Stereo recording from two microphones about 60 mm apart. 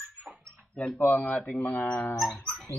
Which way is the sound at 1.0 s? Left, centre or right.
Left.